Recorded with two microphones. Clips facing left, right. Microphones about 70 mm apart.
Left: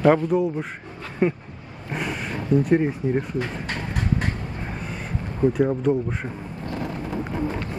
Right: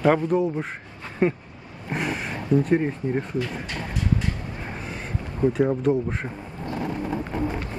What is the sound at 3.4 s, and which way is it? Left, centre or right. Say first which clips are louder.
Vehicle: left 1 dB; left.